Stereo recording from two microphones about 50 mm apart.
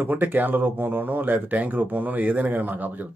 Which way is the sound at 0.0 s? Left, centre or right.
Right.